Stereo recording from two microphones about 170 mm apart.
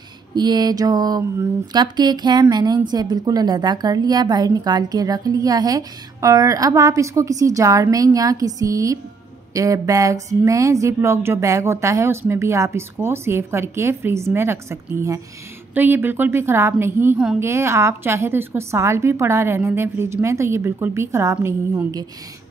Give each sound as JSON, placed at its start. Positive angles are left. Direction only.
{"t": 0.3, "sound": "speech", "side_deg": -25}